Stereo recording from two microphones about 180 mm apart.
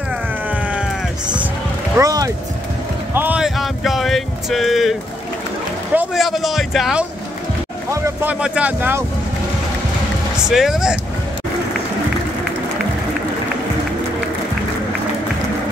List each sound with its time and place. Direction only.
0.5 s sheep: 10° right (ahead or behind)
2.0 s speech: 20° right (ahead or behind)
3.2 s a sound: 5° right (ahead or behind)
5.9 s a man's voice: centre (ahead or behind)
7.9 s speech: 15° right (ahead or behind)
10.4 s speech: centre (ahead or behind)